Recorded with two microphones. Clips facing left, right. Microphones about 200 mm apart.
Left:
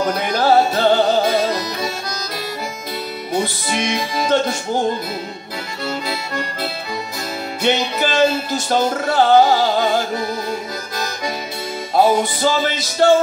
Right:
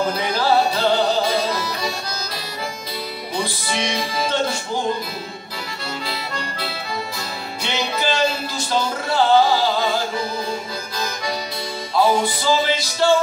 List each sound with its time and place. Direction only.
0.1 s music: 50° left (ahead or behind)
3.3 s music: 50° left (ahead or behind)
7.6 s music: 50° left (ahead or behind)
11.9 s music: 45° left (ahead or behind)